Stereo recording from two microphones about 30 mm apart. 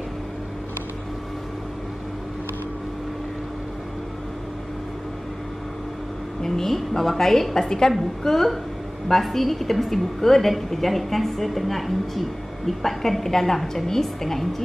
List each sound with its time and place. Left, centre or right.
6.4 s a woman's voice: centre